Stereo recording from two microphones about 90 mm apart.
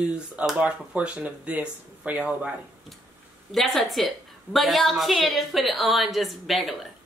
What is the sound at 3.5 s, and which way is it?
A woman's voice, centre (ahead or behind).